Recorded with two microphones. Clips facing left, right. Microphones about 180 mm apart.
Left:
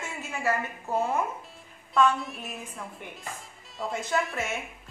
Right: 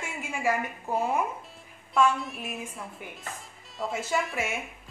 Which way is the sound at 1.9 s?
Centre (ahead or behind).